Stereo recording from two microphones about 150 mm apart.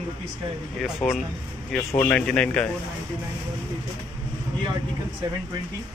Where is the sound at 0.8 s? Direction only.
Centre (ahead or behind).